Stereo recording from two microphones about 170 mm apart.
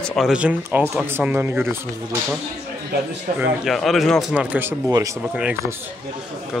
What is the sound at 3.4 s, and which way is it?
Speech, centre (ahead or behind).